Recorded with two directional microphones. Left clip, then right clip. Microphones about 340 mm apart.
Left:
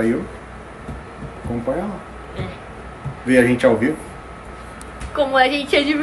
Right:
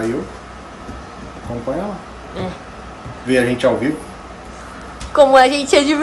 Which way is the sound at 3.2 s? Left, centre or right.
Centre.